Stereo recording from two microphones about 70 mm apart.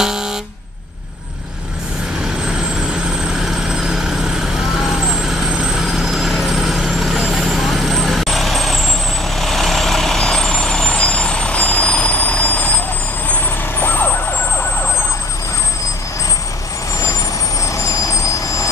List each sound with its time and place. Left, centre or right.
0.0 s air horn: centre
2.4 s vehicle: centre; by 14.7 s left
17.6 s vehicle: left